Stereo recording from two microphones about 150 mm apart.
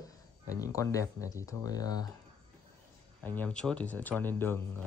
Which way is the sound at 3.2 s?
10° left (ahead or behind).